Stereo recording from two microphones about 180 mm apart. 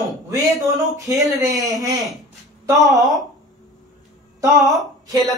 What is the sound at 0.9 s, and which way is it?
A man's voice, 20° right (ahead or behind).